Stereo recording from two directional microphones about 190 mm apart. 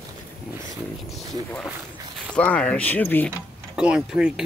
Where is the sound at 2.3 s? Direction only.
5° left (ahead or behind).